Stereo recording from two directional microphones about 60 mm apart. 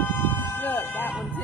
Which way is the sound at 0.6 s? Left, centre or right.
Left.